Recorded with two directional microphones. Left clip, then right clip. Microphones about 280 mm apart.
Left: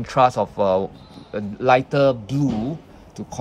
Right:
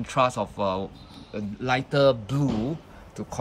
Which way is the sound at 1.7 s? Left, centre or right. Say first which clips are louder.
Left 5 dB; centre.